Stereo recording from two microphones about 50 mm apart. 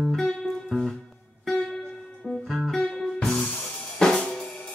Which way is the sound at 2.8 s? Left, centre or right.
Centre.